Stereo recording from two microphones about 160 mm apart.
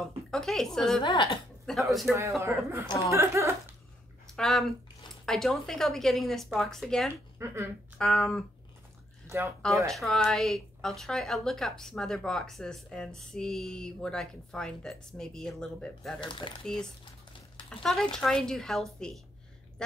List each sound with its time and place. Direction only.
0.3 s a woman's voice: 5° left (ahead or behind)
1.0 s a woman's voice: 30° left (ahead or behind)
1.7 s a woman's voice: centre (ahead or behind)
2.4 s speech: 15° right (ahead or behind)
4.3 s a woman's voice: centre (ahead or behind)
7.3 s speech: 15° right (ahead or behind)
8.0 s a woman's voice: centre (ahead or behind)
9.3 s speech: 15° right (ahead or behind)
9.8 s a woman's voice: centre (ahead or behind)
16.2 s speech: 30° left (ahead or behind)
16.6 s a woman's voice: 5° left (ahead or behind)